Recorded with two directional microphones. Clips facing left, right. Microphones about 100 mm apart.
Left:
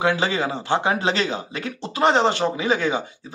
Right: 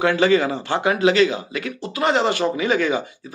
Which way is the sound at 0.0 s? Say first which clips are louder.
Right 4 dB; 20° left (ahead or behind).